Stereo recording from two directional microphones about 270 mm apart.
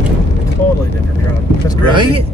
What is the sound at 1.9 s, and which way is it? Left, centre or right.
Speech, centre.